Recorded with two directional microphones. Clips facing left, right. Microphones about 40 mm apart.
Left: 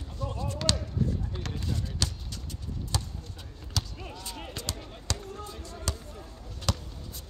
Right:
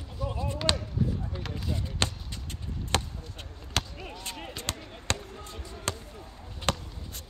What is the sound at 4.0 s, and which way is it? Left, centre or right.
Basketball bounce, centre.